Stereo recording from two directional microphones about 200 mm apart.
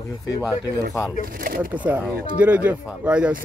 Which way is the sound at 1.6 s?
10° right (ahead or behind).